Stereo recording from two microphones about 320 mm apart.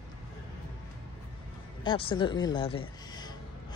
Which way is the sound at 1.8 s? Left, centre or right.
Centre.